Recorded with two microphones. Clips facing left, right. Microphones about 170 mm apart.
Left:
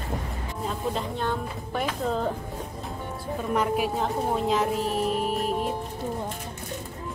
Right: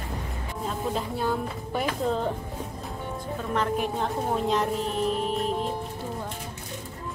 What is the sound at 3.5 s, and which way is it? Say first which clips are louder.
Speech: left 2 dB; 10° left (ahead or behind).